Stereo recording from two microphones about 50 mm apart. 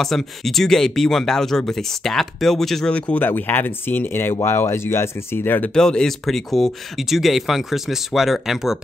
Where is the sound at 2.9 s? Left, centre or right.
Left.